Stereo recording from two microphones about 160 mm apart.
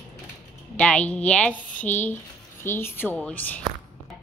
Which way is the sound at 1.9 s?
50° left (ahead or behind).